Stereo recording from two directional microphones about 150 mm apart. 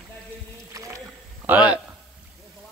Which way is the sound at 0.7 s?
20° right (ahead or behind).